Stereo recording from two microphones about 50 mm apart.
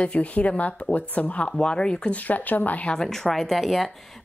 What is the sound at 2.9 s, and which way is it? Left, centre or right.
Speech, centre.